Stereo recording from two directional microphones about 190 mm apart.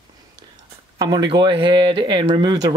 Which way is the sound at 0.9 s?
20° right (ahead or behind).